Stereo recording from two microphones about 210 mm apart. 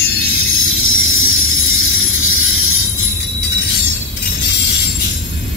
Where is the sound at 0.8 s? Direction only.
70° left (ahead or behind).